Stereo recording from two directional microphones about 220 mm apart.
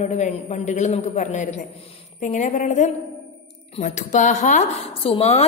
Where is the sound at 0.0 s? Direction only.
30° left (ahead or behind).